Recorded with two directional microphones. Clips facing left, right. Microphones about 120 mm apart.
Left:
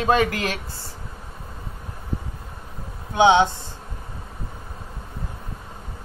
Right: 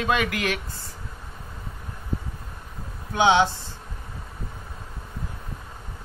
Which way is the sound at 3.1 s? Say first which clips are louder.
Left 3 dB; 20° left (ahead or behind).